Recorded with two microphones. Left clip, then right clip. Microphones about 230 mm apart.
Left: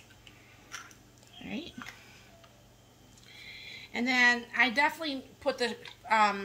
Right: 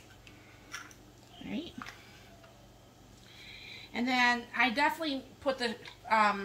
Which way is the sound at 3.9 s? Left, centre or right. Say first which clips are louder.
Left 3 dB; left.